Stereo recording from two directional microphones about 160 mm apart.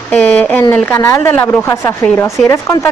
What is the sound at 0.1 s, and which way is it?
Speech, 10° left (ahead or behind).